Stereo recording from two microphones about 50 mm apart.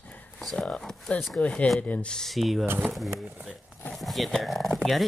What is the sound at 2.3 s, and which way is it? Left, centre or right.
Speech, centre.